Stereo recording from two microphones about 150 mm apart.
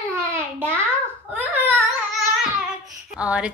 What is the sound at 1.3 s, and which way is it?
Whimper, 10° right (ahead or behind).